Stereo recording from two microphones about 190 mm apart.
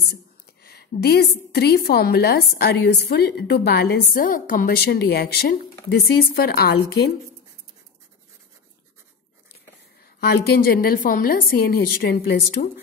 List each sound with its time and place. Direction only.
0.1 s a woman's voice: 55° left (ahead or behind)
10.2 s a woman's voice: 55° left (ahead or behind)